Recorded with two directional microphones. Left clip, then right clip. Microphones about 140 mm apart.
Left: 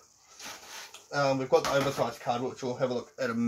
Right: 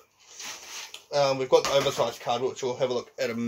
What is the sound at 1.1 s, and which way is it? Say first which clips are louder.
Speech: right 4 dB; 10° left (ahead or behind).